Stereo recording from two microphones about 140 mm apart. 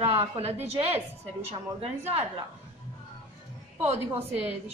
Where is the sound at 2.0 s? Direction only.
50° right (ahead or behind).